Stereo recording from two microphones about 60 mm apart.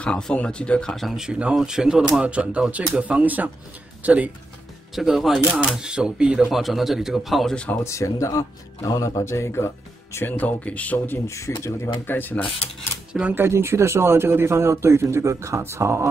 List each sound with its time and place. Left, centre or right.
0.0 s speech: centre
0.9 s speech: centre
2.2 s speech: right
4.9 s a man's voice: centre
6.5 s a man's voice: centre
7.5 s speech: left
7.8 s speech: left
9.2 s speech: left
10.2 s speech: left
11.2 s a man's voice: left
12.1 s mechanisms: left
13.3 s a man's voice: right